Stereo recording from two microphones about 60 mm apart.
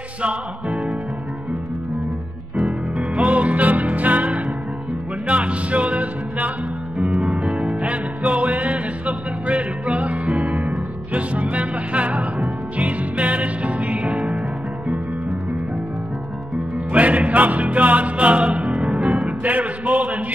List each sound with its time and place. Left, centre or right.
0.2 s music: centre
3.2 s music: right
7.1 s music: centre
7.4 s music: centre
16.9 s music: right